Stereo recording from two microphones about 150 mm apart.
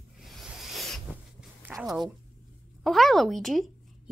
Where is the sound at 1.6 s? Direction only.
20° right (ahead or behind).